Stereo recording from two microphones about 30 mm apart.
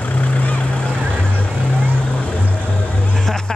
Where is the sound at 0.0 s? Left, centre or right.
Left.